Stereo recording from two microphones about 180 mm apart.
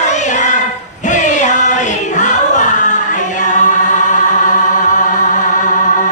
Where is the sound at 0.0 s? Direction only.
40° left (ahead or behind).